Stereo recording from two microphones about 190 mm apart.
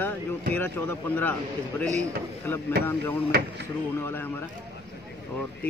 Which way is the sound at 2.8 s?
10° left (ahead or behind).